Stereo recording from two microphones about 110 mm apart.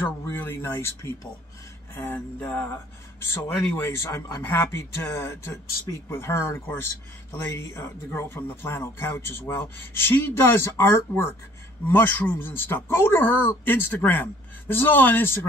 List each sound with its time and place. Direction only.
0.2 s speech: 20° left (ahead or behind)